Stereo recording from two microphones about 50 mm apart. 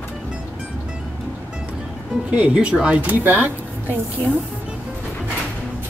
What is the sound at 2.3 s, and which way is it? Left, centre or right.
Speech, right.